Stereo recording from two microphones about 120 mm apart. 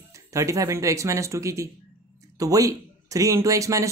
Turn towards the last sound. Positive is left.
turn(degrees=-25)  # may be behind; listen again after turning